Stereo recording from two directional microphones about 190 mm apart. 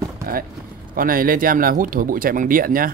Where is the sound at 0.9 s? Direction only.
50° right (ahead or behind).